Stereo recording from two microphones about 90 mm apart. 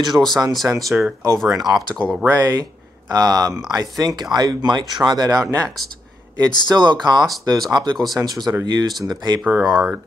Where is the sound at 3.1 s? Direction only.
40° right (ahead or behind).